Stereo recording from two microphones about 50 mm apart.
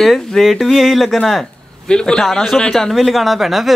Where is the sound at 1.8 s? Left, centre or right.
Centre.